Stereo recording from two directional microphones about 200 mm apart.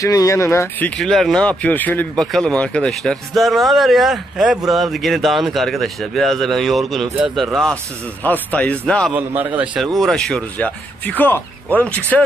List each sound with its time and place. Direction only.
0.0 s a man's voice: 15° left (ahead or behind)
9.1 s a man's voice: 10° right (ahead or behind); by 12.2 s 10° left (ahead or behind)